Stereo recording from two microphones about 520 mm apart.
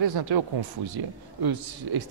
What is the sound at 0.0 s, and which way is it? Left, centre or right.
A man's voice, right.